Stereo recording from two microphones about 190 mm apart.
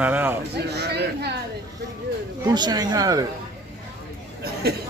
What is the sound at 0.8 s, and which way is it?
Speech, 60° right (ahead or behind).